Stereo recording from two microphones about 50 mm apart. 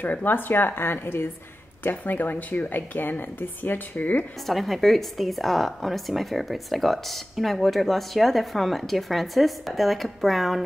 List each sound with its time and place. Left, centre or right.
0.0 s a woman's voice: left
4.5 s a woman's voice: centre